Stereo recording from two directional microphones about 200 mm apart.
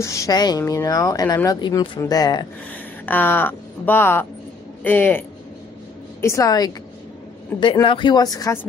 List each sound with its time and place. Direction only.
0.0 s speech: 15° left (ahead or behind)
6.2 s speech: 15° left (ahead or behind)